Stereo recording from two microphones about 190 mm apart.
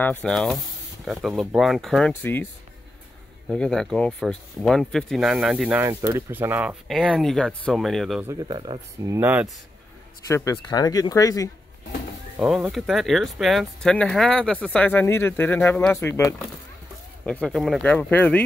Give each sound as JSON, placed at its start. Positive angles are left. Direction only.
{"t": 0.0, "sound": "speech", "side_deg": 5}
{"t": 3.4, "sound": "speech", "side_deg": 5}
{"t": 5.9, "sound": "speech", "side_deg": -15}
{"t": 8.3, "sound": "speech", "side_deg": -20}
{"t": 9.1, "sound": "speech", "side_deg": -10}
{"t": 10.2, "sound": "speech", "side_deg": 15}
{"t": 12.4, "sound": "speech", "side_deg": -5}
{"t": 17.2, "sound": "speech", "side_deg": 5}